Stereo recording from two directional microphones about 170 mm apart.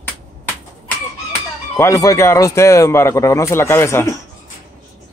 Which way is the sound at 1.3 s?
15° left (ahead or behind).